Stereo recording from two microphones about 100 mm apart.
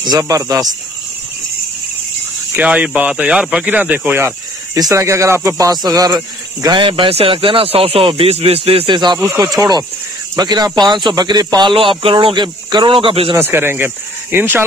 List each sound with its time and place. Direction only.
0.0 s speech: 40° right (ahead or behind)
2.5 s speech: 15° right (ahead or behind)
4.7 s speech: 35° right (ahead or behind); by 8.8 s 75° right (ahead or behind)
8.8 s speech: 50° right (ahead or behind)
9.3 s speech: 35° right (ahead or behind)
11.7 s speech: 60° right (ahead or behind)
13.4 s speech: 25° right (ahead or behind)